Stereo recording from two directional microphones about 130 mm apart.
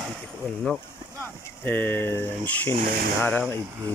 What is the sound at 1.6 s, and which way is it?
Speech, 15° left (ahead or behind).